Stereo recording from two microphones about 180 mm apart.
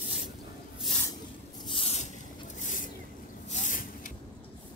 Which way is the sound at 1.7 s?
35° left (ahead or behind).